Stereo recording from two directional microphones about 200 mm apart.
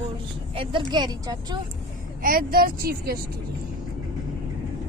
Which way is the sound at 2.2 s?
45° right (ahead or behind).